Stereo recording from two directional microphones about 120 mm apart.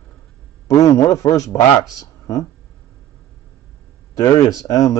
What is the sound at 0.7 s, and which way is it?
Speech, 25° left (ahead or behind).